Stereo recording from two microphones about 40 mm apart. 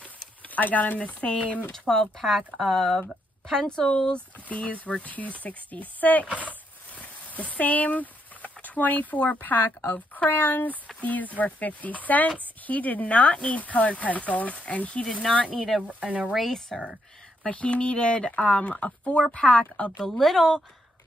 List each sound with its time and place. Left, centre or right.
0.5 s speech: left
0.9 s speech: left
1.7 s speech: centre
4.5 s speech: left
7.0 s a sound: left
9.4 s speech: left
16.0 s speech: right
16.4 s speech: centre
17.5 s speech: left
18.7 s speech: left
20.0 s speech: centre